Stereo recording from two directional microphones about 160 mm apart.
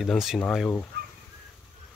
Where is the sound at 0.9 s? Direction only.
90° right.